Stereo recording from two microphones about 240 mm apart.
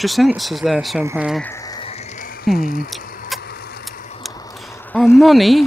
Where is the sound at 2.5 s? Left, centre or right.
Centre.